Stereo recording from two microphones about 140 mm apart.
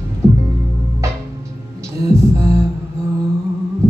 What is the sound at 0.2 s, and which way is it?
Music, 20° right (ahead or behind).